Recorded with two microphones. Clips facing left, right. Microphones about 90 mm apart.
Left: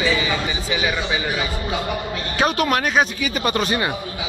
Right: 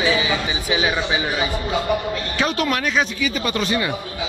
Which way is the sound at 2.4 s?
50° left (ahead or behind).